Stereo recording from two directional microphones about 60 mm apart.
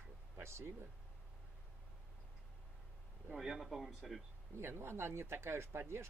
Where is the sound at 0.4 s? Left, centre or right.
Right.